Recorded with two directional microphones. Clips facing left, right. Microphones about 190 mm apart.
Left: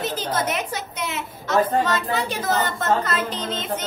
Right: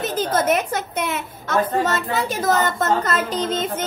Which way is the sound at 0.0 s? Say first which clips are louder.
Right 4 dB; 50° right (ahead or behind).